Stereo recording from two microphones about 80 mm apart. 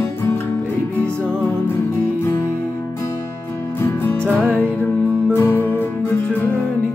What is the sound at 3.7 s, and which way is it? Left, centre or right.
Music, left.